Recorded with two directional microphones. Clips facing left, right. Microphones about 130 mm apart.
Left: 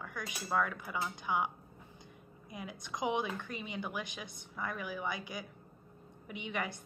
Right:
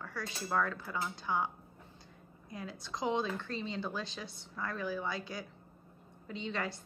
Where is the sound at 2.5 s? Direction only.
15° left (ahead or behind).